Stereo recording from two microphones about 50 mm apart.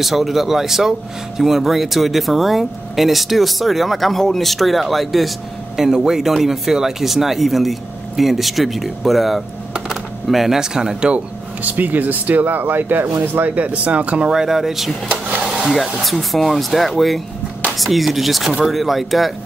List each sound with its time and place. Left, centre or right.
0.0 s speech: centre
11.6 s speech: right
13.7 s speech: right
14.3 s speech: centre
15.0 s printer: right
15.4 s a sound: centre
16.0 s speech: centre